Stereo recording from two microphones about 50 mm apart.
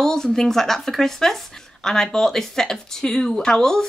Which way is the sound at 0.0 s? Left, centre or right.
Centre.